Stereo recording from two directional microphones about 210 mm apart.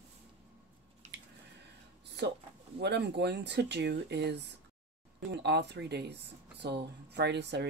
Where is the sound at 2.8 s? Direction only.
55° right (ahead or behind).